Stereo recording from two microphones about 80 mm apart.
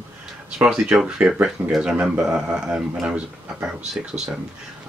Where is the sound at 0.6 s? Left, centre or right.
Centre.